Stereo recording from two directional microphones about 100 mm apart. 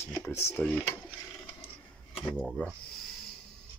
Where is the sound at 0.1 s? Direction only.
25° left (ahead or behind).